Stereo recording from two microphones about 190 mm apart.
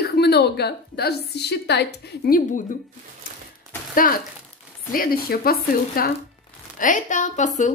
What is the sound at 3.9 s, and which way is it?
Speech, 50° left (ahead or behind).